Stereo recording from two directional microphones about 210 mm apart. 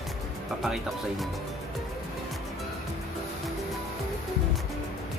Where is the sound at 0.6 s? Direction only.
Centre (ahead or behind).